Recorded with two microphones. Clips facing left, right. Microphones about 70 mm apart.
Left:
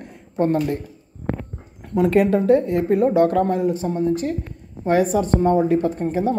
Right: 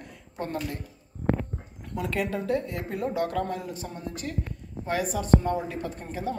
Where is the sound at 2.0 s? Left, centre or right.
Left.